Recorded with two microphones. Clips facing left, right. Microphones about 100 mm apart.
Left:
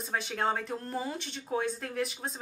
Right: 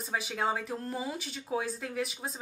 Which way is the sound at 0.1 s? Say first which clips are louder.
Left 1 dB; 5° right (ahead or behind).